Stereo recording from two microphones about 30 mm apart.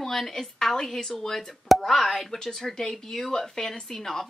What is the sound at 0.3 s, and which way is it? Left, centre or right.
A woman's voice, centre.